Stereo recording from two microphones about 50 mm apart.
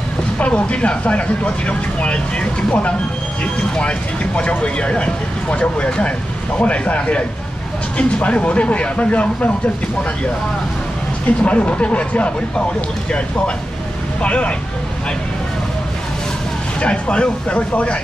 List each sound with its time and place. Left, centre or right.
0.4 s speech: left
11.2 s speech: left
14.2 s speech: left
16.8 s speech: left